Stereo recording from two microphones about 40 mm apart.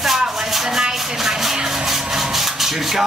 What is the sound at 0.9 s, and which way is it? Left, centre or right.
Speech, centre.